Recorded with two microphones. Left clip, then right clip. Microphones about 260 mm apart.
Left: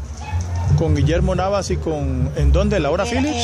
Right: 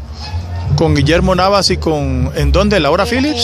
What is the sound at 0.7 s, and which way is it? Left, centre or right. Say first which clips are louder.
Speech: right 8 dB; right.